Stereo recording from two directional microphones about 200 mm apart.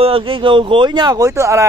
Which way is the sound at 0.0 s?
25° right (ahead or behind).